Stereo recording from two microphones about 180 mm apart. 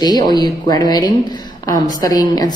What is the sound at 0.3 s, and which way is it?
A woman's voice, 20° left (ahead or behind).